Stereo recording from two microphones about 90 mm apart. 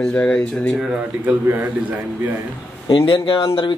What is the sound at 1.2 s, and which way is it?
Speech, 15° right (ahead or behind).